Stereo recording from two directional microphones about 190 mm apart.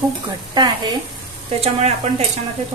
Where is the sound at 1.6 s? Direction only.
35° right (ahead or behind).